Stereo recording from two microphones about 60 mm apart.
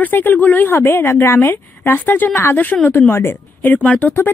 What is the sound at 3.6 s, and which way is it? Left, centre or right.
Speech, left.